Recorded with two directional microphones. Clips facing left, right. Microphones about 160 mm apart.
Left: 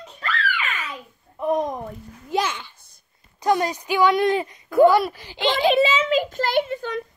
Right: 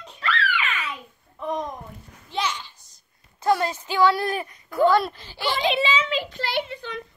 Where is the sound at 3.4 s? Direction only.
15° left (ahead or behind).